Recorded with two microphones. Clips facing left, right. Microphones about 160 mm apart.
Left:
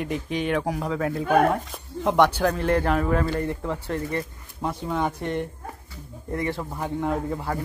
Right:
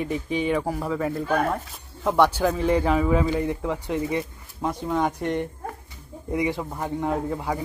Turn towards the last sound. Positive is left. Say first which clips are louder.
# right 1 dB
turn(degrees=-5)  # may be behind; listen again after turning